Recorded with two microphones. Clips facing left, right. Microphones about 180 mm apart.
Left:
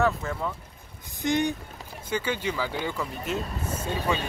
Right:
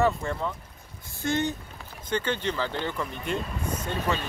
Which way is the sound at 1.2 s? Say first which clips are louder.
Left 2 dB; 15° left (ahead or behind).